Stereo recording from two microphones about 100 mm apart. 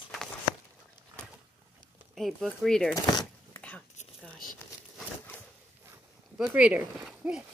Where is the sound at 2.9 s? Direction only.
40° left (ahead or behind).